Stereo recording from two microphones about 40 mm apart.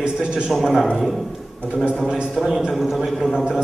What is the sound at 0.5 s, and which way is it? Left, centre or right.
Speech, centre.